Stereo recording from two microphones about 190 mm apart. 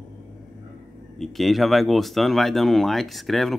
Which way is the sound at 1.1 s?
Centre (ahead or behind).